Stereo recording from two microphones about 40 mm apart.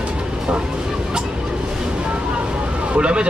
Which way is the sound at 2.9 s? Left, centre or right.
Right.